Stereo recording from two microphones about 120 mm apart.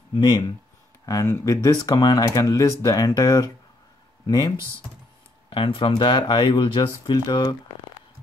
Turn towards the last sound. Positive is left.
turn(degrees=40)  # may be behind; listen again after turning